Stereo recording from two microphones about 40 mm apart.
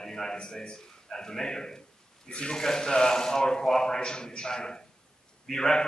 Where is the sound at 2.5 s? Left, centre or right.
Centre.